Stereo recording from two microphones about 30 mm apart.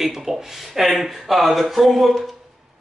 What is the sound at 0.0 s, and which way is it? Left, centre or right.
Speech, centre.